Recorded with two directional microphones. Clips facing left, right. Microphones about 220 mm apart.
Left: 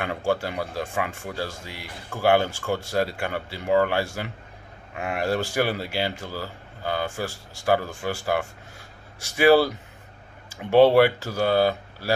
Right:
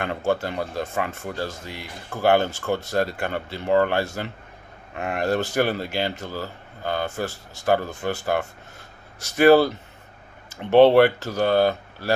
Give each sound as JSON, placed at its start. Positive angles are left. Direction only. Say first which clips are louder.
{"t": 0.0, "sound": "speech", "louder": "right 1 dB", "side_deg": 10}
{"t": 11.1, "sound": "speech", "louder": "right 2 dB", "side_deg": 10}